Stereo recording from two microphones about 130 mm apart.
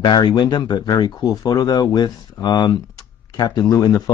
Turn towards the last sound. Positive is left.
turn(degrees=30)  # may be behind; listen again after turning